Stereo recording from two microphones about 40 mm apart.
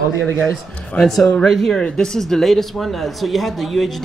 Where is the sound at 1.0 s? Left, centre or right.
Centre.